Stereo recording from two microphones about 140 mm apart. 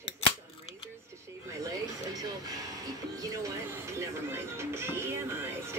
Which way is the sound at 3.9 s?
20° right (ahead or behind).